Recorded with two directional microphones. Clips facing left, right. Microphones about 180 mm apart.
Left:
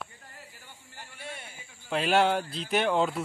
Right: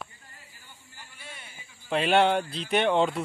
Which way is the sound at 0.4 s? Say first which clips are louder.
Left 6 dB; 65° left (ahead or behind).